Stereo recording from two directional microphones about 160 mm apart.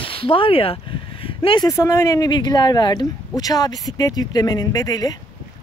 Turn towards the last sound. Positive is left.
turn(degrees=25)  # may be behind; listen again after turning